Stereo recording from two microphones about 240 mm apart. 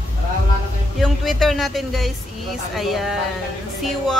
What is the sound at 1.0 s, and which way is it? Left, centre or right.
Speech, centre.